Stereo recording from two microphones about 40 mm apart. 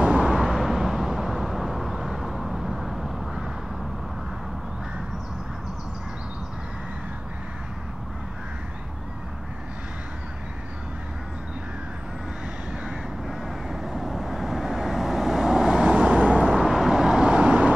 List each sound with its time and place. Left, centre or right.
0.4 s vehicle: centre
13.7 s vehicle: centre
15.7 s vehicle: right
16.5 s vehicle: centre
17.4 s vehicle: right